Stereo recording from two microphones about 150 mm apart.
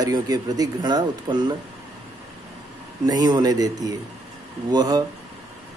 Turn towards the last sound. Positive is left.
turn(degrees=-25)  # may be behind; listen again after turning